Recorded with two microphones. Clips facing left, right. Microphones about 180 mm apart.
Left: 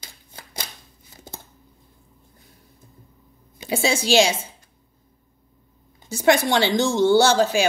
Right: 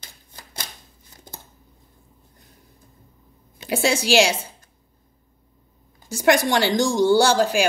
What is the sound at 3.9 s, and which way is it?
Speech, 10° right (ahead or behind).